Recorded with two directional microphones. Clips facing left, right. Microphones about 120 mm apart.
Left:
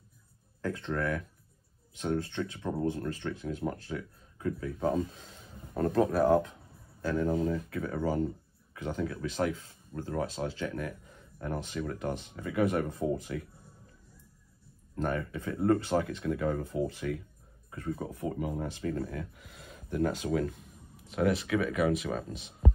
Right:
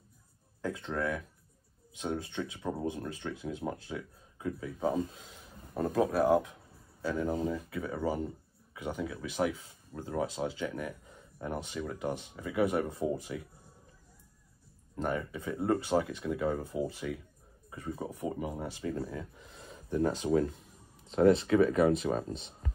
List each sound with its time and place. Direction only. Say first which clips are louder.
0.6 s speech: left 1 dB; 15° right (ahead or behind)
15.0 s speech: left 1 dB; 15° right (ahead or behind)
19.1 s speech: left 1 dB; 25° right (ahead or behind)